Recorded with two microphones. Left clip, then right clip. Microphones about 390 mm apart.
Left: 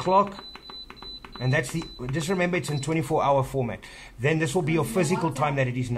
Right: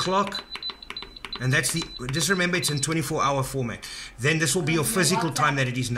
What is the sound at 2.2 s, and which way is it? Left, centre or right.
Speech, centre.